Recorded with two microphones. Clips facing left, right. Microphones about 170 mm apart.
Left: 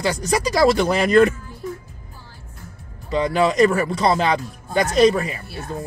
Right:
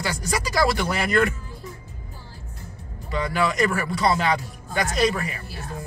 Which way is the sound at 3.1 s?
25° left (ahead or behind).